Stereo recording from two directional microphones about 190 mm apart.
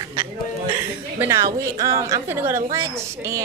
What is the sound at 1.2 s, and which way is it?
A woman's voice, 15° right (ahead or behind).